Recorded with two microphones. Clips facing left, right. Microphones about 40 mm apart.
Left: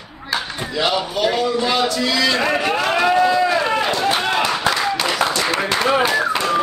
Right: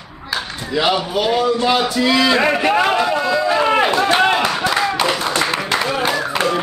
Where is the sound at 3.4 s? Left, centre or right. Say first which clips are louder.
Right 3 dB; centre.